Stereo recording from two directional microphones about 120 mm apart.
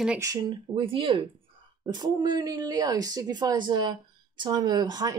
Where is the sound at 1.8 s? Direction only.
35° right (ahead or behind).